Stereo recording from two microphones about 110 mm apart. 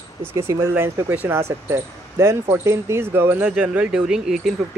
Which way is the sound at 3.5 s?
10° right (ahead or behind).